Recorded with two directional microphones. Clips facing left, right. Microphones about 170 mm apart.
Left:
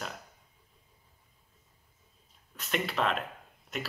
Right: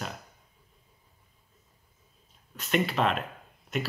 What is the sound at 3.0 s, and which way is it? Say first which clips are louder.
Speech: right 2 dB; 30° right (ahead or behind).